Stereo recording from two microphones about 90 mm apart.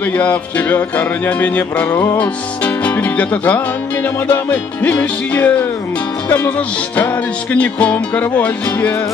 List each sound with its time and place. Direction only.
0.2 s music: 15° left (ahead or behind)
6.2 s speech: 20° left (ahead or behind)
7.5 s music: 15° left (ahead or behind)